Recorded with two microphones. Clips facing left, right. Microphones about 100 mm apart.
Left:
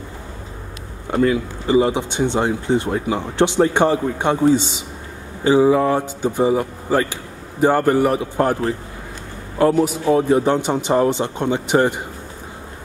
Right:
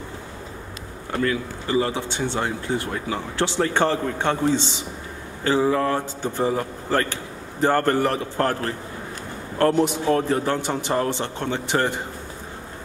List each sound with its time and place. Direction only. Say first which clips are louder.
1.1 s speech: left 6 dB; 20° left (ahead or behind)